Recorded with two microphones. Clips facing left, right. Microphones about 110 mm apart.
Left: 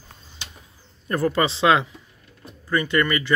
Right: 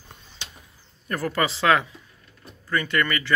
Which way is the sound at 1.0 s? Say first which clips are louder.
Left 4 dB; 25° left (ahead or behind).